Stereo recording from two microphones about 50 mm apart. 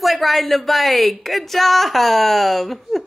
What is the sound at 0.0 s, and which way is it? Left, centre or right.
A woman's voice, centre.